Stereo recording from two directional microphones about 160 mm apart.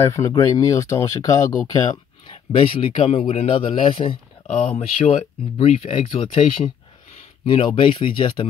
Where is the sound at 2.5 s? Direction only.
35° left (ahead or behind).